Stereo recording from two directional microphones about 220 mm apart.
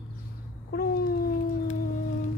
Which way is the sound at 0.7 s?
45° left (ahead or behind).